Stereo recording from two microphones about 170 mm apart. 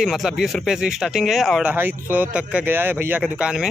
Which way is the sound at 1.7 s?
10° right (ahead or behind).